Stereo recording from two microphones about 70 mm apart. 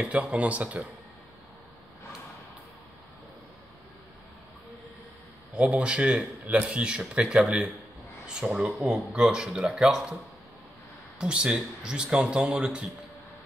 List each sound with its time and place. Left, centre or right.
0.0 s speech: centre
5.6 s speech: centre
11.1 s speech: centre